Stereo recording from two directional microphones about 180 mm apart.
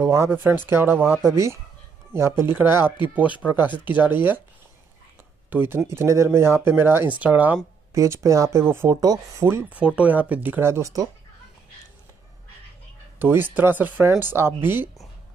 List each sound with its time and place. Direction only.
0.0 s speech: 15° right (ahead or behind)
5.5 s speech: 10° right (ahead or behind)
13.2 s speech: 10° right (ahead or behind)